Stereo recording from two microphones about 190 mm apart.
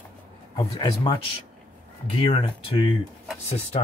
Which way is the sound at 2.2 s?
30° left (ahead or behind).